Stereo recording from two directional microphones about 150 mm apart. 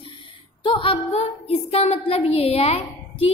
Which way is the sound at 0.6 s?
35° left (ahead or behind).